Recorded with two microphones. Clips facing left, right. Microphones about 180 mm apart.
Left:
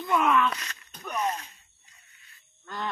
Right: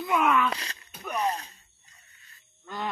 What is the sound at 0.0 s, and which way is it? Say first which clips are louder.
Speech: even; 5° right (ahead or behind).